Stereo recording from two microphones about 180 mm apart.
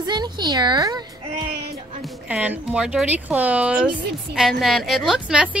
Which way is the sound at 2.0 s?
10° right (ahead or behind).